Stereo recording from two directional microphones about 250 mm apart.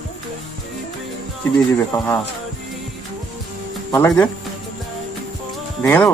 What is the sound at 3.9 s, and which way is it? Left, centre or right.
Speech, centre.